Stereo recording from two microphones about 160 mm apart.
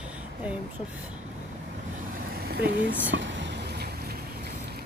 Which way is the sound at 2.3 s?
85° right.